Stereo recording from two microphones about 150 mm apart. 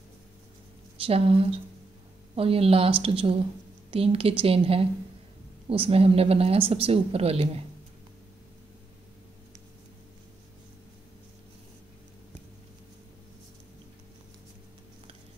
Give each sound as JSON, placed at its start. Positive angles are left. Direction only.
{"t": 1.0, "sound": "speech", "side_deg": -40}